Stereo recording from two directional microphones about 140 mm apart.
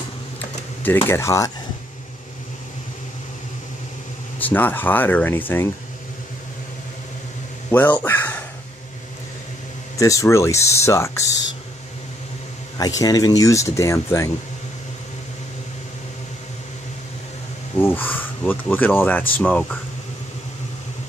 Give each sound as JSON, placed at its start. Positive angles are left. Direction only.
{"t": 0.4, "sound": "typing", "side_deg": 15}
{"t": 4.4, "sound": "speech", "side_deg": 15}
{"t": 7.7, "sound": "speech", "side_deg": 15}
{"t": 9.9, "sound": "speech", "side_deg": 25}
{"t": 12.7, "sound": "speech", "side_deg": 25}
{"t": 17.7, "sound": "speech", "side_deg": 15}